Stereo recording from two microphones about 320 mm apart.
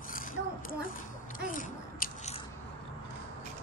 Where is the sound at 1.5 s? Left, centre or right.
Left.